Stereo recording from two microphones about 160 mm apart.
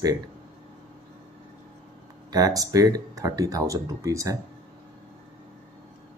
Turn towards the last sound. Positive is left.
turn(degrees=-20)  # may be behind; listen again after turning